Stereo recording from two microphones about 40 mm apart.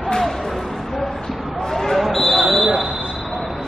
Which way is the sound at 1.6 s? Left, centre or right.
Centre.